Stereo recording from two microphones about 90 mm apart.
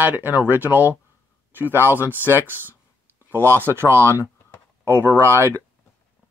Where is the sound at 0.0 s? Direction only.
20° right (ahead or behind).